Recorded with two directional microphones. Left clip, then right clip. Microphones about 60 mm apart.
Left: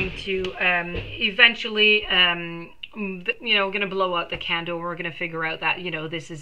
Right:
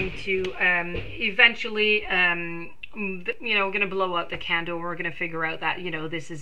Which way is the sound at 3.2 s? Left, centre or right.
Right.